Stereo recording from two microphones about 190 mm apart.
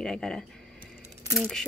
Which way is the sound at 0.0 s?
5° left (ahead or behind).